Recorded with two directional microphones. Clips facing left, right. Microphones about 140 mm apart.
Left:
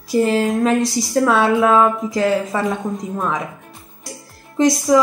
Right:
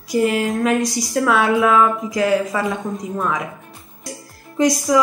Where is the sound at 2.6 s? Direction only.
Centre (ahead or behind).